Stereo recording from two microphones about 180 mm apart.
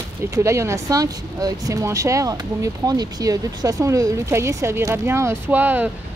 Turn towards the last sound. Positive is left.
turn(degrees=-10)  # may be behind; listen again after turning